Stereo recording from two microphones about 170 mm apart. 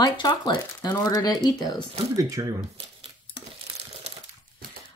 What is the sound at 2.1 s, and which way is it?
Speech, 20° right (ahead or behind).